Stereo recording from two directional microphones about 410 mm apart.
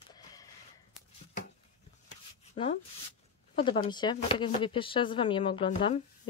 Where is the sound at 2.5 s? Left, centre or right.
Centre.